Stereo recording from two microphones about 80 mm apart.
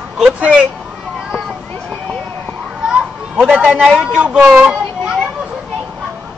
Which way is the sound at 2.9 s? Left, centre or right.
Centre.